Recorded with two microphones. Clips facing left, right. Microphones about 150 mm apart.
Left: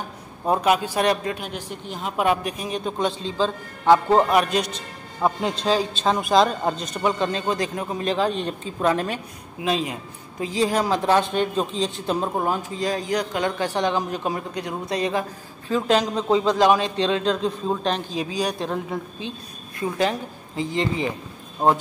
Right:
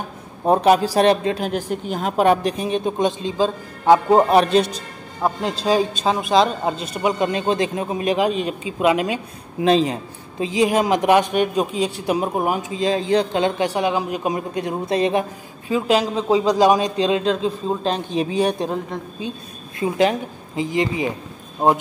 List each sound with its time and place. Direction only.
0.5 s speech: 35° right (ahead or behind)
1.4 s a woman's voice: 45° right (ahead or behind)
2.1 s a man's voice: 35° right (ahead or behind); by 4.3 s 15° right (ahead or behind)
4.3 s a man's voice: 30° right (ahead or behind)
5.2 s a man's voice: centre (ahead or behind)
9.6 s speech: 30° right (ahead or behind)
10.4 s a man's voice: 20° right (ahead or behind)
15.7 s a man's voice: 5° right (ahead or behind)
17.8 s a man's voice: 25° right (ahead or behind)
19.8 s a man's voice: 20° right (ahead or behind)